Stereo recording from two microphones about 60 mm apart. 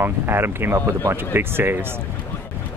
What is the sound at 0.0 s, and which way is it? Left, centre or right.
Speech, right.